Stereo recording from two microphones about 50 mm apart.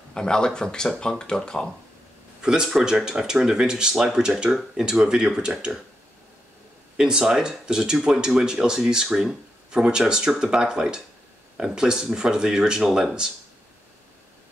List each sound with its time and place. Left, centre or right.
0.1 s speech: centre
2.4 s speech: centre
7.0 s speech: centre